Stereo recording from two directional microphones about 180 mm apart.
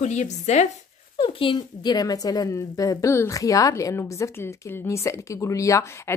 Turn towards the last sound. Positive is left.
turn(degrees=15)  # may be behind; listen again after turning